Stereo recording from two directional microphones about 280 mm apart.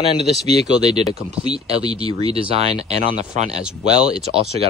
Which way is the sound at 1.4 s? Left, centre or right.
Right.